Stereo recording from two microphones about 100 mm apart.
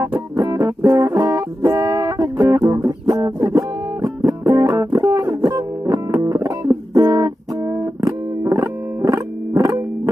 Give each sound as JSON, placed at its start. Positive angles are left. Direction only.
{"t": 0.4, "sound": "music", "side_deg": -30}